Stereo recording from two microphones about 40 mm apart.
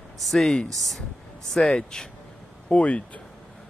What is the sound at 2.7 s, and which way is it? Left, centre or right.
Speech, left.